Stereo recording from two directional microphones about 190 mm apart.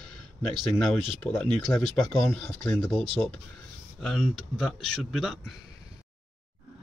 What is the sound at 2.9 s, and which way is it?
Speech, 25° right (ahead or behind).